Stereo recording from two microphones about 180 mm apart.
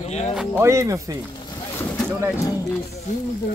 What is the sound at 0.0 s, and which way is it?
Speech, 40° left (ahead or behind).